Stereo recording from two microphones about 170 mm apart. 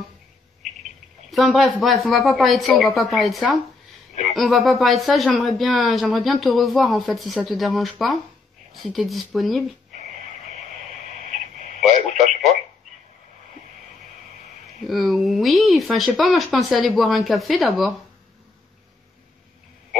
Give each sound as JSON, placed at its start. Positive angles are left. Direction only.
{"t": 0.6, "sound": "cricket", "side_deg": 0}
{"t": 1.3, "sound": "speech", "side_deg": 0}
{"t": 11.1, "sound": "radio", "side_deg": -45}
{"t": 14.9, "sound": "speech", "side_deg": 0}